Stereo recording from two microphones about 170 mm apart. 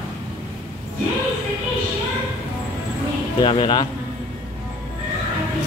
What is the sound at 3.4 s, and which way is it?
Speech, 30° left (ahead or behind).